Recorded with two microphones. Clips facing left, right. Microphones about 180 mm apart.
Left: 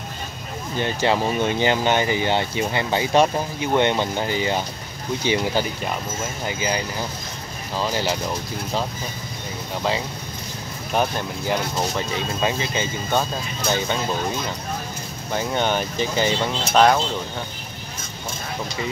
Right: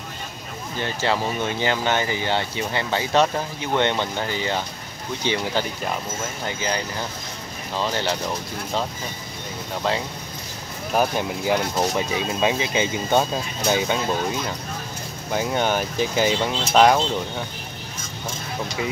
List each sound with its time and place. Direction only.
0.7 s speech: 15° left (ahead or behind)
9.8 s speech: centre (ahead or behind)
15.3 s speech: 5° right (ahead or behind)